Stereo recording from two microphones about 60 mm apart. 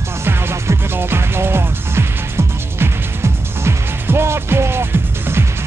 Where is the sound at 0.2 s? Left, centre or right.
Right.